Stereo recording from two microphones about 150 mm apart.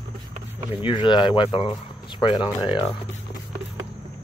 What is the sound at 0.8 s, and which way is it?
Speech, 30° left (ahead or behind).